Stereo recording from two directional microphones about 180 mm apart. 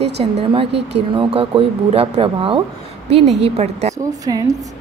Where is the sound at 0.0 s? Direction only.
30° right (ahead or behind).